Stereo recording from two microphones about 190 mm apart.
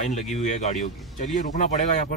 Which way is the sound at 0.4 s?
40° left (ahead or behind).